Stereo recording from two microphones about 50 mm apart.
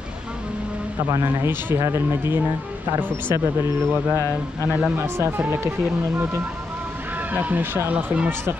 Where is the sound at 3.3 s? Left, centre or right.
Right.